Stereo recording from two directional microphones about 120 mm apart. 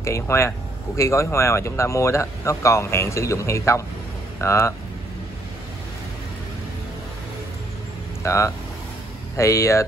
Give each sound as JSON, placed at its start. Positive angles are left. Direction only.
{"t": 0.0, "sound": "speech", "side_deg": 25}
{"t": 8.2, "sound": "speech", "side_deg": 25}